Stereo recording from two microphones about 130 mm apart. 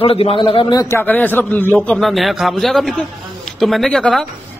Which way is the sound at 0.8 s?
15° left (ahead or behind).